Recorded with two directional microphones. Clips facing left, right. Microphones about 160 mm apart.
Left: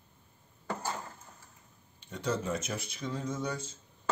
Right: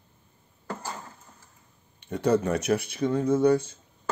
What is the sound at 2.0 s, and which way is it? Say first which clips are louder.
Speech: right 10 dB; 60° right (ahead or behind).